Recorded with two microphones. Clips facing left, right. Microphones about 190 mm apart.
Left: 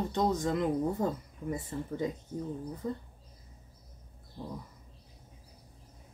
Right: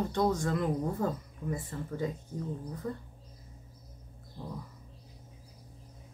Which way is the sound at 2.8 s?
20° left (ahead or behind).